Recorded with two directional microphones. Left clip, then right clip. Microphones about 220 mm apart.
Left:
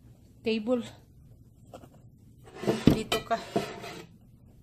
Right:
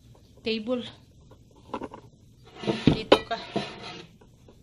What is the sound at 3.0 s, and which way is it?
Dishes, 30° left (ahead or behind).